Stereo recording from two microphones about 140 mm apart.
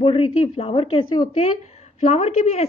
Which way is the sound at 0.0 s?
40° left (ahead or behind).